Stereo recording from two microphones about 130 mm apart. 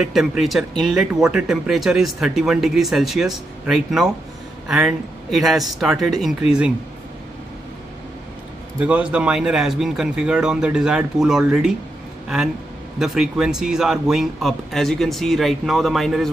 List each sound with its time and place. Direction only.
0.0 s speech: 5° right (ahead or behind)
8.7 s speech: 10° right (ahead or behind)
13.0 s speech: 5° right (ahead or behind)